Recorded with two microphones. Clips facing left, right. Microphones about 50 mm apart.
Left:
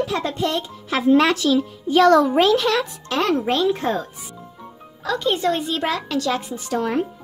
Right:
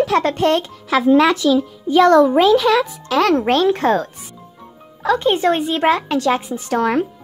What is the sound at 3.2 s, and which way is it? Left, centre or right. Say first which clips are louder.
Speech: right 4 dB; right.